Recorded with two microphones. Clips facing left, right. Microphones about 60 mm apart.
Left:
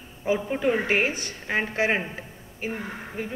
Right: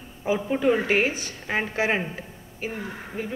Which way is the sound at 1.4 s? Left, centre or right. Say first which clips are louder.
Even; centre.